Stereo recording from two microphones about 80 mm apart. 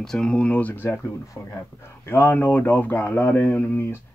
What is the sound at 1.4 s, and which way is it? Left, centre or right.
Speech, left.